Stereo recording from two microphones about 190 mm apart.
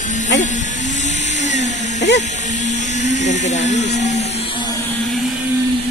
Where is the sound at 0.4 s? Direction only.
40° left (ahead or behind).